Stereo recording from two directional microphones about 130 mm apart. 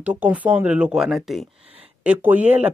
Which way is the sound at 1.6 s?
50° right (ahead or behind).